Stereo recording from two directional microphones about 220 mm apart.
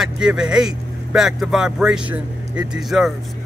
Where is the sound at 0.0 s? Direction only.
5° right (ahead or behind).